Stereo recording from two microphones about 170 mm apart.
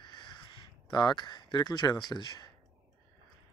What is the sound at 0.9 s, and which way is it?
Speech, 25° left (ahead or behind).